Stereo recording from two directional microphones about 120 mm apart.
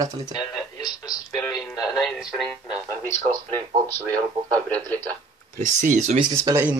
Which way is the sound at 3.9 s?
10° left (ahead or behind).